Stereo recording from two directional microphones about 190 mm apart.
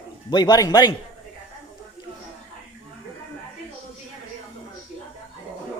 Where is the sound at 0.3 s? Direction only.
20° left (ahead or behind).